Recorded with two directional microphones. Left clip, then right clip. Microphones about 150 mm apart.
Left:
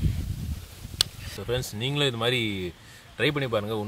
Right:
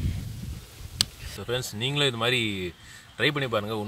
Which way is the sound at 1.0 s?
Centre (ahead or behind).